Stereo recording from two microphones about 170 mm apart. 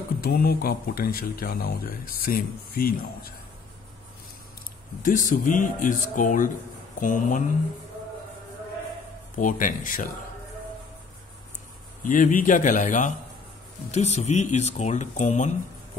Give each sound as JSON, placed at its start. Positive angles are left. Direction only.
{"t": 0.2, "sound": "speech", "side_deg": 65}
{"t": 5.0, "sound": "speech", "side_deg": 50}
{"t": 9.3, "sound": "speech", "side_deg": 50}
{"t": 12.0, "sound": "speech", "side_deg": 50}